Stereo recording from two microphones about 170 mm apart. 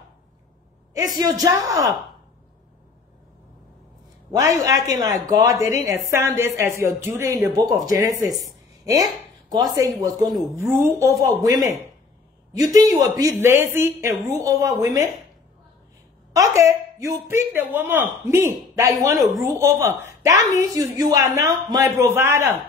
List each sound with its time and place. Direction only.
1.1 s speech: 20° right (ahead or behind)
4.3 s speech: 20° right (ahead or behind)
9.5 s speech: 20° right (ahead or behind)
16.3 s speech: 20° right (ahead or behind)